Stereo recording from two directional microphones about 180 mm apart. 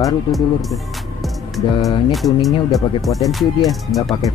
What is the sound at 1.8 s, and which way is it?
Speech, 20° left (ahead or behind).